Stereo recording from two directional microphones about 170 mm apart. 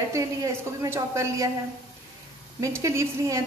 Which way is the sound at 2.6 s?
15° right (ahead or behind).